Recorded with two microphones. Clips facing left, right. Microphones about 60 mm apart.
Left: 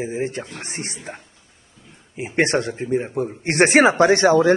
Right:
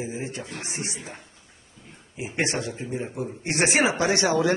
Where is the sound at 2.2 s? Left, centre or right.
Left.